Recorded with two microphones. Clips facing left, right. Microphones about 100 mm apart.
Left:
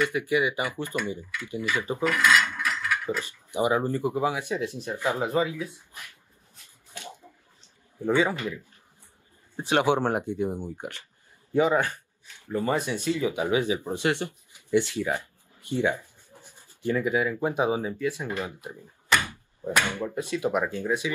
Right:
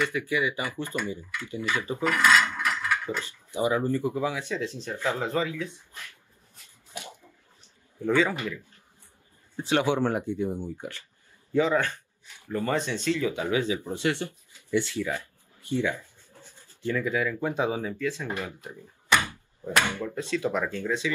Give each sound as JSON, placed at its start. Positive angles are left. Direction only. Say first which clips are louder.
{"t": 0.0, "sound": "speech", "louder": "left 2 dB", "side_deg": 20}
{"t": 2.1, "sound": "mechanisms", "louder": "right 1 dB", "side_deg": -30}
{"t": 2.4, "sound": "mechanisms", "louder": "right 1 dB", "side_deg": -20}
{"t": 3.2, "sound": "speech", "louder": "left 2 dB", "side_deg": 15}
{"t": 8.0, "sound": "speech", "louder": "even", "side_deg": 20}
{"t": 9.6, "sound": "speech", "louder": "left 1 dB", "side_deg": 20}
{"t": 19.9, "sound": "speech", "louder": "even", "side_deg": 15}